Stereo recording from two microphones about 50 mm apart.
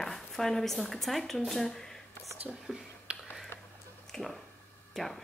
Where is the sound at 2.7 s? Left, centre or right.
Centre.